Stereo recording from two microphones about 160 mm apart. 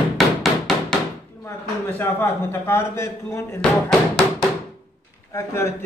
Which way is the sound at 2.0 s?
15° left (ahead or behind).